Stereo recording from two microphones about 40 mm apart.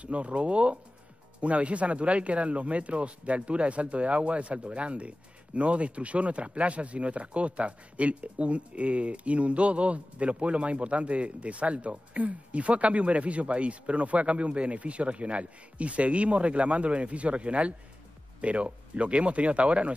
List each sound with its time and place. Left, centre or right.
0.0 s speech: right